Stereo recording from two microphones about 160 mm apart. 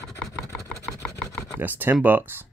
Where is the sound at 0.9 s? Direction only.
Centre (ahead or behind).